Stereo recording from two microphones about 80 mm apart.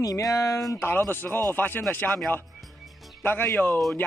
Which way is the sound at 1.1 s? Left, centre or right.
Left.